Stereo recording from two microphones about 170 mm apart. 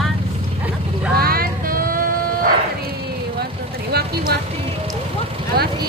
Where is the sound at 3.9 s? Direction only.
65° right (ahead or behind).